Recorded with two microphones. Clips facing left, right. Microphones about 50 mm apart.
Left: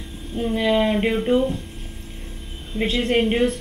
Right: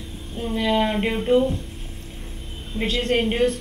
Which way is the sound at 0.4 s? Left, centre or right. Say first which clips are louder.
Left 2 dB; centre.